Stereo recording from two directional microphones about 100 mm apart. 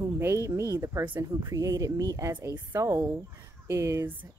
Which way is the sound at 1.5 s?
35° right (ahead or behind).